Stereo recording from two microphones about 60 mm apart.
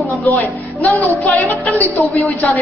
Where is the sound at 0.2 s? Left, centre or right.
Left.